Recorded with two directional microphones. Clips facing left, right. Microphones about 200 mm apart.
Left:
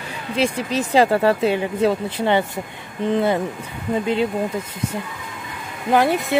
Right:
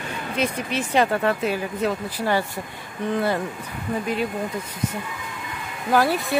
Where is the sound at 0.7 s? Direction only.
30° left (ahead or behind).